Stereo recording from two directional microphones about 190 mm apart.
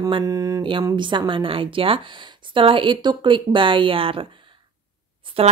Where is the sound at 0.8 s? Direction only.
25° right (ahead or behind).